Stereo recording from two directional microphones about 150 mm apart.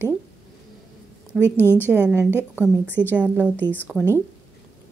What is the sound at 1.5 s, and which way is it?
Speech, 15° left (ahead or behind).